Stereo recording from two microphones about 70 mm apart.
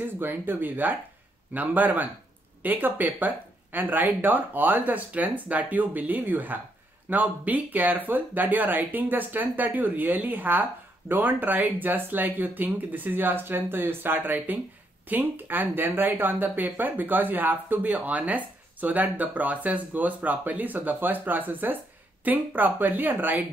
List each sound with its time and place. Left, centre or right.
0.0 s speech: right